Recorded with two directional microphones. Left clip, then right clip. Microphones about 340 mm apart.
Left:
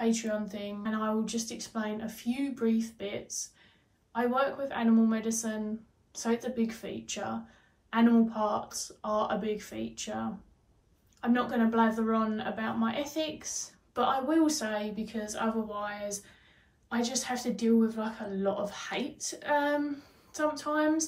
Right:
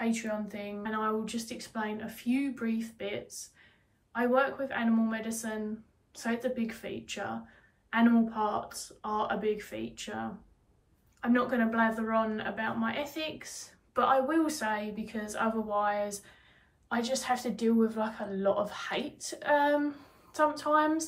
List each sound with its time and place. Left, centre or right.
0.0 s speech: centre
11.1 s speech: centre